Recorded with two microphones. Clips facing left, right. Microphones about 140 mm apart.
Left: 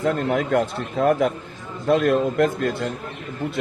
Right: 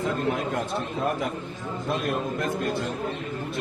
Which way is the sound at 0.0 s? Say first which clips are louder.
Left 5 dB; 80° left.